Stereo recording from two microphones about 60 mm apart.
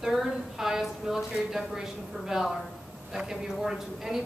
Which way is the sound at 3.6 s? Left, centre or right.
Centre.